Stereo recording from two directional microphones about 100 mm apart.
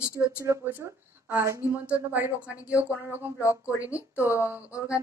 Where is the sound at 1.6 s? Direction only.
30° left (ahead or behind).